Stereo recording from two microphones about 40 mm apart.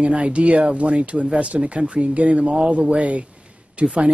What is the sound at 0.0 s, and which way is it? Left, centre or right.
Speech, right.